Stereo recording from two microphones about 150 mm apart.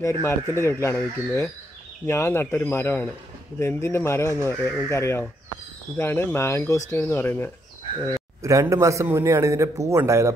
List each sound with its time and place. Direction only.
0.2 s speech: 15° left (ahead or behind)
8.1 s a man's voice: 20° right (ahead or behind)